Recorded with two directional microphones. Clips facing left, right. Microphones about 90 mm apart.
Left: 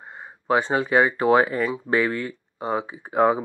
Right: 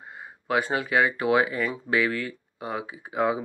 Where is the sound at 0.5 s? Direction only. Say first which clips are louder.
Left 4 dB; 30° left (ahead or behind).